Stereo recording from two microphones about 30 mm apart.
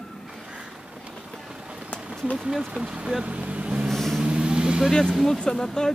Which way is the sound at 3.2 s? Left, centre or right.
Right.